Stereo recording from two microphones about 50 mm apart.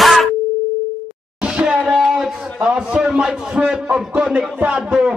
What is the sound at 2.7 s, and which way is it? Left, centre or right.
A man's voice, centre.